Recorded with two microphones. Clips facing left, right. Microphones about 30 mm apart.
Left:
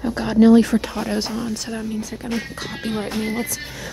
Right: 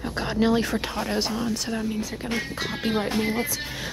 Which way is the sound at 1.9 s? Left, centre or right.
Centre.